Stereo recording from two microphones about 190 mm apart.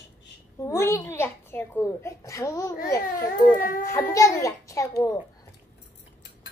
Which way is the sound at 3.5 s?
45° left (ahead or behind).